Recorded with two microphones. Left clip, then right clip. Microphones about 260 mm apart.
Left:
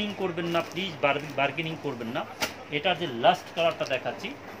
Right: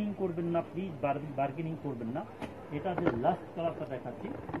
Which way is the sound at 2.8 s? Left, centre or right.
Centre.